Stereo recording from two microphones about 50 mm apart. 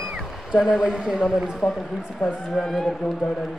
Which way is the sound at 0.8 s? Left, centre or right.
Centre.